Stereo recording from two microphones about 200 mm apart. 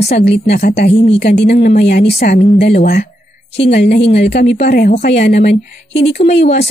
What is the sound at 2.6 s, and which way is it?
Speech, 35° left (ahead or behind).